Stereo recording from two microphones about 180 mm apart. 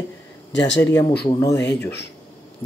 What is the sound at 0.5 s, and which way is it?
Speech, 80° left.